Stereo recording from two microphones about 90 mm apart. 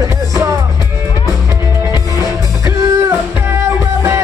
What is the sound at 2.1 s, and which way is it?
Music, 35° right (ahead or behind).